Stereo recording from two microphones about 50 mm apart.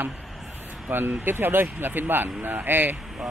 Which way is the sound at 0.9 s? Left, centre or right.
Right.